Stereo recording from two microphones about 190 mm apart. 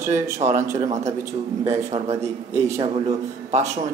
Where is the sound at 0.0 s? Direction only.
40° right (ahead or behind).